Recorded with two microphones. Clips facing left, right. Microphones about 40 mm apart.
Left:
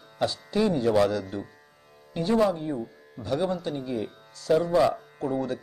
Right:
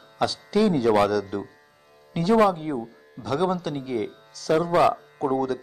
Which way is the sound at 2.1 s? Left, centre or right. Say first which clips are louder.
Right 4 dB; right.